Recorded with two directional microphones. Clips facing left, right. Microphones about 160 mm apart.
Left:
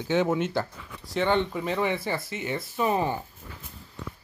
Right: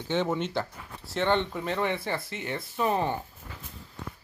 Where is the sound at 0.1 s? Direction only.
10° left (ahead or behind).